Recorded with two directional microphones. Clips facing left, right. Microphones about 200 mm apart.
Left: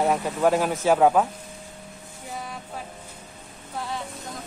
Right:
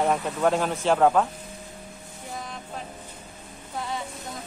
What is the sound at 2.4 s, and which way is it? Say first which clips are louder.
Vehicle: left 1 dB; 5° left (ahead or behind).